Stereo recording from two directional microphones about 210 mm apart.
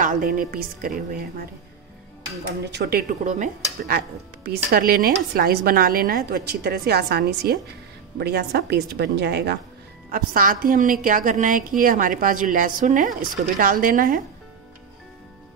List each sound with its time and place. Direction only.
0.0 s a woman's voice: 40° right (ahead or behind)
2.6 s a woman's voice: 55° right (ahead or behind)